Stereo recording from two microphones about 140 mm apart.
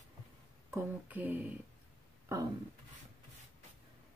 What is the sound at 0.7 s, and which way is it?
Speech, 15° right (ahead or behind).